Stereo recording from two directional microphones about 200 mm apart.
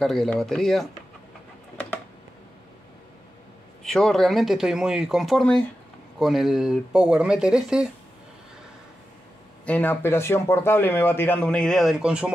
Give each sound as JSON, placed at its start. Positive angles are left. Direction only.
{"t": 0.0, "sound": "speech", "side_deg": 0}
{"t": 3.8, "sound": "speech", "side_deg": 0}
{"t": 9.7, "sound": "speech", "side_deg": 10}